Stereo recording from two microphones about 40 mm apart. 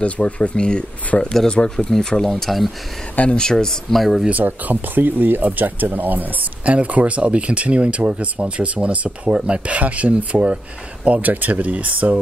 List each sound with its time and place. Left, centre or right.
0.0 s speech: left
1.9 s speech: centre
3.3 s speech: centre
3.9 s speech: centre
4.3 s speech: right